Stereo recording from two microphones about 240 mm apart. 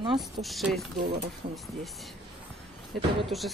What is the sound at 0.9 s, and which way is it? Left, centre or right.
Speech, right.